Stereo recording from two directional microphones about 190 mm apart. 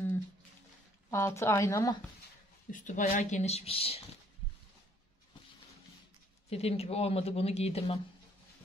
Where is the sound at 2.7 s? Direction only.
40° left (ahead or behind).